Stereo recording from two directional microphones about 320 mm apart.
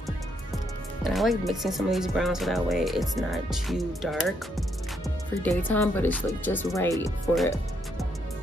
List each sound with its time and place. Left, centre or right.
1.0 s speech: centre